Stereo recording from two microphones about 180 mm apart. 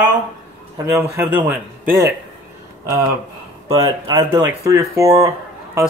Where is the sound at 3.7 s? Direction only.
30° right (ahead or behind).